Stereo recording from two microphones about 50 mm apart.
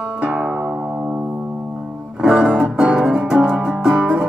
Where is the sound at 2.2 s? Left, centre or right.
Centre.